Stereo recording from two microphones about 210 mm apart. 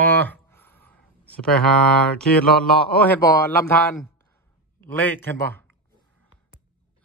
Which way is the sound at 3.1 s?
15° left (ahead or behind).